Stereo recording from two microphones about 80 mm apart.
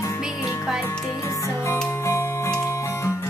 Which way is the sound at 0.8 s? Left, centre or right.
Left.